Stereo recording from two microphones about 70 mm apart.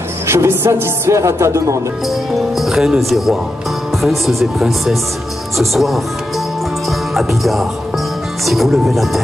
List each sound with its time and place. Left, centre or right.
0.3 s speech: right
2.0 s speech: centre
6.9 s music: centre
8.5 s speech: centre